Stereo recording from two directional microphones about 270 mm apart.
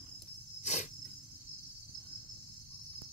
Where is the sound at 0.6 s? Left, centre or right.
Left.